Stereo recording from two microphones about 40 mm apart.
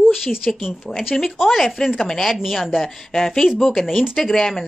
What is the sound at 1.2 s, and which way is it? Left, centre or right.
A woman's voice, centre.